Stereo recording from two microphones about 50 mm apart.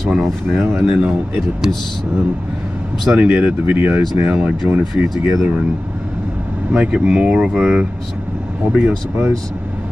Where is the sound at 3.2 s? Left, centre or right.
Right.